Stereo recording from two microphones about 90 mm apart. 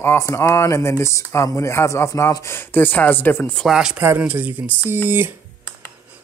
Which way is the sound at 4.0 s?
20° right (ahead or behind).